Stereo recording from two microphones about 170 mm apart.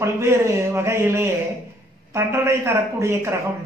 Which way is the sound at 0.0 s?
15° right (ahead or behind).